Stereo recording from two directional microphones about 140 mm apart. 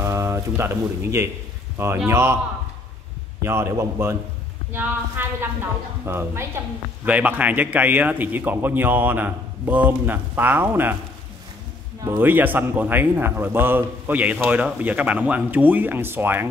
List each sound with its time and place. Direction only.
0.0 s a man's voice: 20° right (ahead or behind)
3.4 s a man's voice: 20° right (ahead or behind)
12.0 s a man's voice: 20° right (ahead or behind)